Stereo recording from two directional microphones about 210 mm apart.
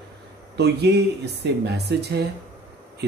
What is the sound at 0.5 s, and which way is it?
Speech, 50° right (ahead or behind).